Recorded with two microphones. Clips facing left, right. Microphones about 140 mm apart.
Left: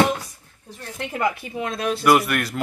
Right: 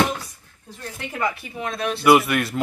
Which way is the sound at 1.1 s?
20° left (ahead or behind).